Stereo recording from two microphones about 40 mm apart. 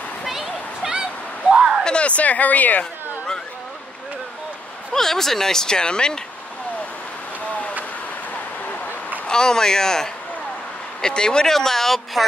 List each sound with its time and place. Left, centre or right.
0.2 s a sound: centre
1.9 s speech: left
4.9 s speech: centre
9.3 s speech: centre